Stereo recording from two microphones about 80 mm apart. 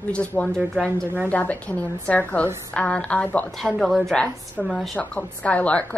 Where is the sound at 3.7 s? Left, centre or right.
Centre.